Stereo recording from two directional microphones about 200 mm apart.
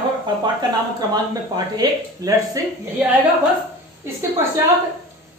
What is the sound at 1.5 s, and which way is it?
Speech, 20° right (ahead or behind).